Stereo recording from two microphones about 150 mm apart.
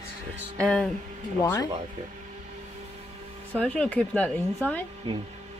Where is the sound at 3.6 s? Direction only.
10° left (ahead or behind).